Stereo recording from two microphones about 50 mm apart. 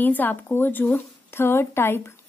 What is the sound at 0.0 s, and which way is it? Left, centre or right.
A woman's voice, left.